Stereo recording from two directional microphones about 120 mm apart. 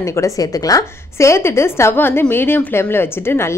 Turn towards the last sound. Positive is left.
turn(degrees=20)  # may be behind; listen again after turning